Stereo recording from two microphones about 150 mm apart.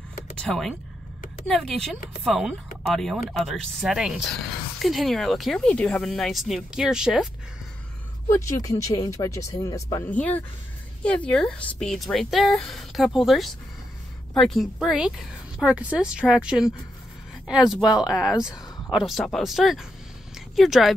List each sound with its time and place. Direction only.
0.4 s speech: 5° left (ahead or behind)
8.3 s speech: 20° left (ahead or behind)
10.1 s speech: 10° left (ahead or behind)
18.0 s speech: 5° right (ahead or behind)
20.3 s a sound: centre (ahead or behind)